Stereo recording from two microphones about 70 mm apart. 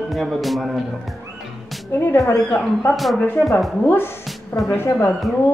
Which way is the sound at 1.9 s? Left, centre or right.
Left.